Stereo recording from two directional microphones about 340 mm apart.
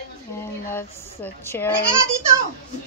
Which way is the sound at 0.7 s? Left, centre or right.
Centre.